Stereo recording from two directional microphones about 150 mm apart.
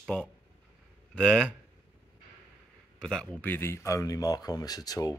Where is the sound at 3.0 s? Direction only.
5° left (ahead or behind).